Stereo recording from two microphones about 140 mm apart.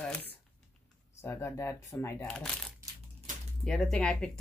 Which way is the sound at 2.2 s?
5° left (ahead or behind).